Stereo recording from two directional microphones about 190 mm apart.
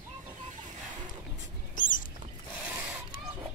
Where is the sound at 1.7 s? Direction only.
45° left (ahead or behind).